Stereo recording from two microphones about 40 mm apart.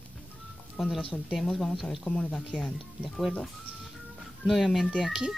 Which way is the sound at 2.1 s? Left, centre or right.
Left.